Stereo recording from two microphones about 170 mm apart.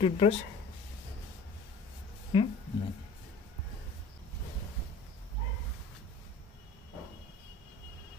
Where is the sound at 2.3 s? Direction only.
30° left (ahead or behind).